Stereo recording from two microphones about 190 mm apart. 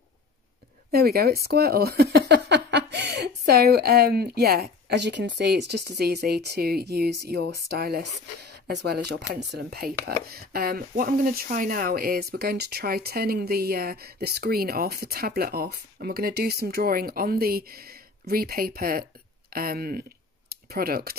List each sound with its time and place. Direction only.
0.9 s speech: 55° right (ahead or behind)